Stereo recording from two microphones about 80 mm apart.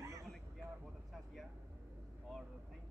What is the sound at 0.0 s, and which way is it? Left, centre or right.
Vehicle, right.